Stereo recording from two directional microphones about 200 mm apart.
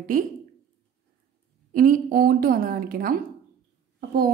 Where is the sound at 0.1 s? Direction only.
45° right (ahead or behind).